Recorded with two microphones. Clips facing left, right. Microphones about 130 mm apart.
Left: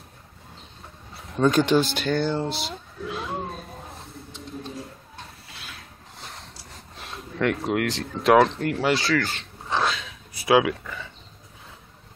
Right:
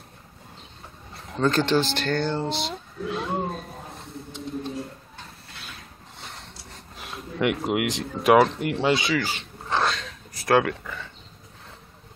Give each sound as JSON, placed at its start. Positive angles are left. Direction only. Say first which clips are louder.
{"t": 1.4, "sound": "speech", "louder": "left 2 dB", "side_deg": 10}
{"t": 4.3, "sound": "mechanisms", "louder": "right 5 dB", "side_deg": 0}
{"t": 8.2, "sound": "speech", "louder": "even", "side_deg": -5}
{"t": 8.8, "sound": "speech", "louder": "right 1 dB", "side_deg": -20}
{"t": 9.1, "sound": "a sound", "louder": "left 1 dB", "side_deg": -5}